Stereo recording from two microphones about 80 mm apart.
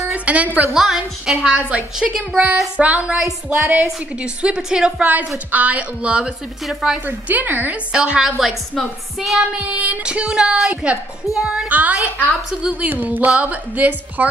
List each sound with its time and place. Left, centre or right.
0.1 s a woman's voice: centre
0.7 s a woman's voice: centre
7.1 s a woman's voice: right
7.9 s a woman's voice: centre
9.8 s a woman's voice: centre
11.7 s a woman's voice: centre